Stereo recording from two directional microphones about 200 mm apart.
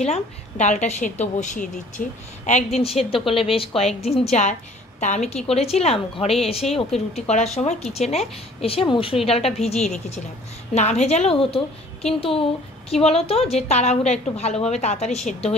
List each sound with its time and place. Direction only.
0.0 s a woman's voice: 35° left (ahead or behind)